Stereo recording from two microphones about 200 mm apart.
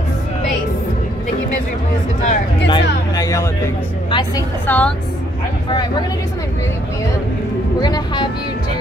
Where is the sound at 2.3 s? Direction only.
25° left (ahead or behind).